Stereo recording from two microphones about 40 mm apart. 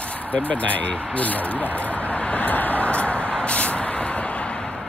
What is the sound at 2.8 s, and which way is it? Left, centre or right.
Vehicle, left.